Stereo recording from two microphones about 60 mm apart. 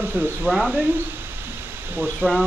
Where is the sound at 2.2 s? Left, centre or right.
Right.